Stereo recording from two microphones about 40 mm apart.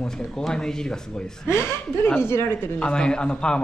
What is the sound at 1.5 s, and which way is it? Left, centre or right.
A woman's voice, left.